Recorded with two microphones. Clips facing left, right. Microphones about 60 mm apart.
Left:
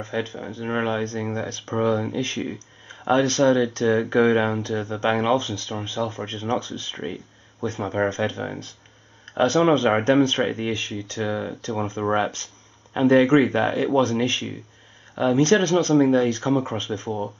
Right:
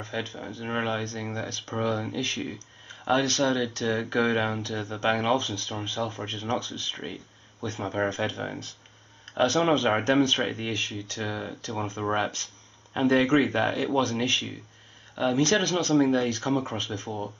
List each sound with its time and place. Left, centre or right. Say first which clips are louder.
0.0 s speech: left 5 dB; centre
4.5 s speech: left 6 dB; centre
11.7 s speech: left 5 dB; centre